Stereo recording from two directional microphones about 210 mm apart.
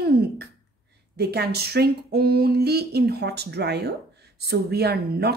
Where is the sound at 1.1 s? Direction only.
50° right (ahead or behind).